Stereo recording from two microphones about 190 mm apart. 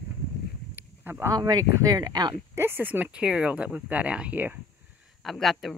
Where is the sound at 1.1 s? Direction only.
15° right (ahead or behind).